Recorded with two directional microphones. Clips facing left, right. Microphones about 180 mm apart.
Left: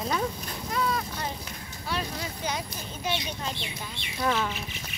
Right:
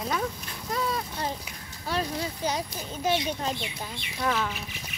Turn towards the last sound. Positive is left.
turn(degrees=5)  # may be behind; listen again after turning